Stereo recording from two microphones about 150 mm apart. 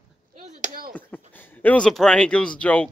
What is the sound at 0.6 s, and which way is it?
Speech, 80° right.